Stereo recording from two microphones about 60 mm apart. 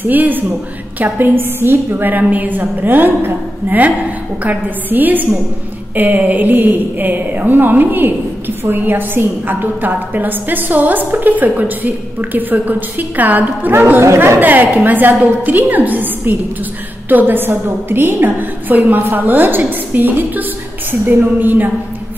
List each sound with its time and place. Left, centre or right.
0.0 s a woman's voice: right
14.0 s speech: right
14.4 s a woman's voice: right